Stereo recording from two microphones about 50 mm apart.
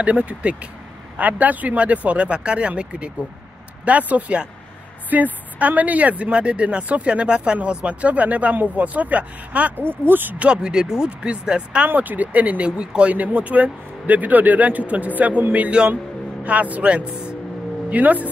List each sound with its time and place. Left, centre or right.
0.0 s speech: right
9.8 s speech: right
10.4 s speech: centre
11.9 s speech: right